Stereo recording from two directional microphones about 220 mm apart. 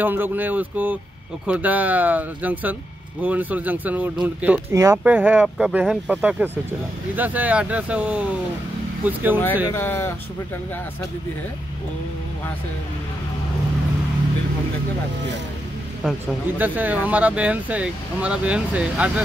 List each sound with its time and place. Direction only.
0.0 s speech: 10° right (ahead or behind)
9.7 s speech: 10° left (ahead or behind)
16.0 s speech: 5° right (ahead or behind)